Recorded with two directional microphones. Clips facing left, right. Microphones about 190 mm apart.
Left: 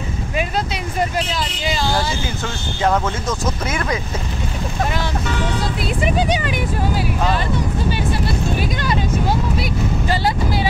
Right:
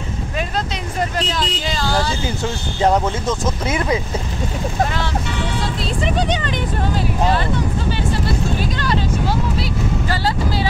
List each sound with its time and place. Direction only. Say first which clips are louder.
1.1 s speech: right 1 dB; 5° left (ahead or behind)
2.9 s speech: right 1 dB; 25° right (ahead or behind)
6.0 s speech: left 2 dB; 10° left (ahead or behind)
8.5 s speech: even; 15° left (ahead or behind)